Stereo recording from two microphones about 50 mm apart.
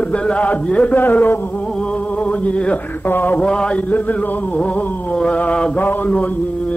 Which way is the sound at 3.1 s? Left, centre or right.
Left.